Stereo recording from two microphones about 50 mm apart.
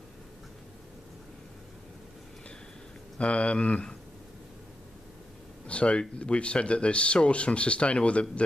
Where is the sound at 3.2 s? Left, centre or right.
Left.